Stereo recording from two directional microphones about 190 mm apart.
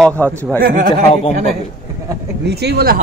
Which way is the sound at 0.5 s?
50° right (ahead or behind).